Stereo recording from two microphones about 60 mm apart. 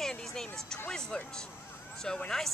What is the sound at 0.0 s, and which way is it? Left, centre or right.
Music, centre.